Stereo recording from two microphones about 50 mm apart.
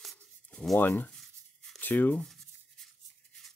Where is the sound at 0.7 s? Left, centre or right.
Left.